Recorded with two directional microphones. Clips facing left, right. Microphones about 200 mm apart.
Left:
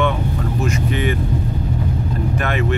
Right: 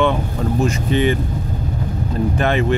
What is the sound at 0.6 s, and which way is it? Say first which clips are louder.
Speech: right 3 dB; 30° right (ahead or behind).